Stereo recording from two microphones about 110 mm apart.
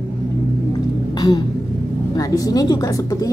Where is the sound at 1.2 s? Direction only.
35° left (ahead or behind).